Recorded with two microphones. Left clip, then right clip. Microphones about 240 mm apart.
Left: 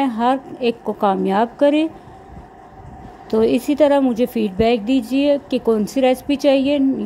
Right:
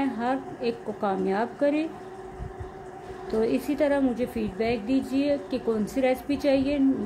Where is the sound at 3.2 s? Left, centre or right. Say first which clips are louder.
Left 9 dB; left.